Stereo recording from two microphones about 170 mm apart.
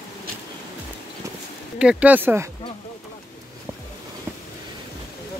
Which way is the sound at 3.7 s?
15° right (ahead or behind).